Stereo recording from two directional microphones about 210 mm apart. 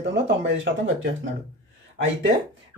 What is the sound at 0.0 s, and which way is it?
Speech, 55° right (ahead or behind).